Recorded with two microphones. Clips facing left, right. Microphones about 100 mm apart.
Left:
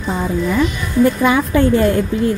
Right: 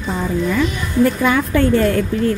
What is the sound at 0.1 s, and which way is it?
A woman's voice, 15° left (ahead or behind).